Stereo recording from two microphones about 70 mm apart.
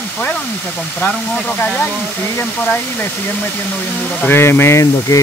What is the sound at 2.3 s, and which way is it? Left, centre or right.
Speech, left.